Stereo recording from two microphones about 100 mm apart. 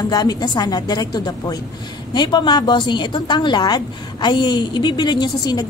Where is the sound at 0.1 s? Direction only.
40° left (ahead or behind).